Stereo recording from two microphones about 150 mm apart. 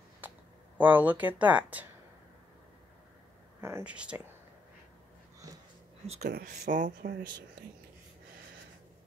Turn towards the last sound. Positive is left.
turn(degrees=-65)  # may be behind; listen again after turning